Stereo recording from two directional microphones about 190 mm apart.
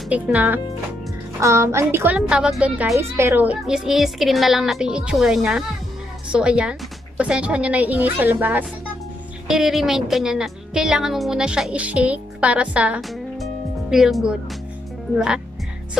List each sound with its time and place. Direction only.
0.1 s a woman's voice: 10° right (ahead or behind)